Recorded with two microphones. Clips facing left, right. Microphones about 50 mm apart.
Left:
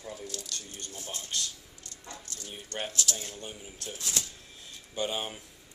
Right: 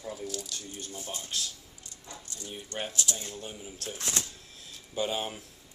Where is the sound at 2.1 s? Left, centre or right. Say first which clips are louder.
Right 1 dB; centre.